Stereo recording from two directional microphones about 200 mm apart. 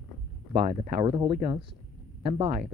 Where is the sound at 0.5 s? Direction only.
25° right (ahead or behind).